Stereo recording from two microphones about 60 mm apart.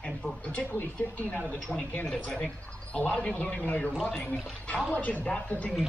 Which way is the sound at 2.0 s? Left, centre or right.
Centre.